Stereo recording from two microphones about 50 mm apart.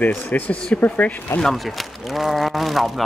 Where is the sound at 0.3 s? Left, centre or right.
Left.